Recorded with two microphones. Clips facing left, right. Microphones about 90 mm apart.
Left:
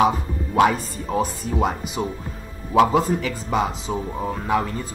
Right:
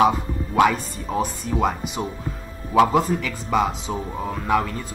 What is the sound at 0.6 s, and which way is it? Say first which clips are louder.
Speech: even; 40° left (ahead or behind).